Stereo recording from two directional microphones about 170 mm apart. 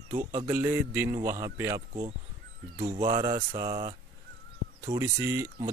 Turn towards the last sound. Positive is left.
turn(degrees=-15)  # may be behind; listen again after turning